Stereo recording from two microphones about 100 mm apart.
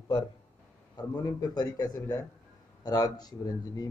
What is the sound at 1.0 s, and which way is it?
Speech, 45° left (ahead or behind).